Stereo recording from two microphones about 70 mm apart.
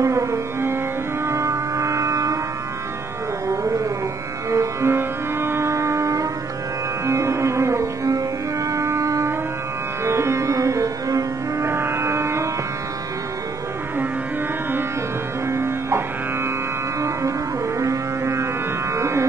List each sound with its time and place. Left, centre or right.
0.0 s music: right
1.2 s a sound: right
4.5 s music: right
8.7 s a sound: right
10.0 s music: right
11.6 s music: right
15.4 s music: right
17.7 s music: right